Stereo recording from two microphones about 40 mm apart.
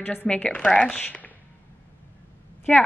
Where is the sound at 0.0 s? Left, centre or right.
Left.